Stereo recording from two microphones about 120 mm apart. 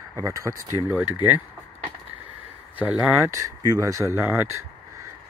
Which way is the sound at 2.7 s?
10° right (ahead or behind).